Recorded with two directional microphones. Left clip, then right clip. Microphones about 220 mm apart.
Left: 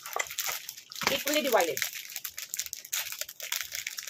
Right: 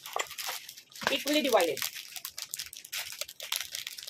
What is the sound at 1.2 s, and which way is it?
Speech, 10° right (ahead or behind).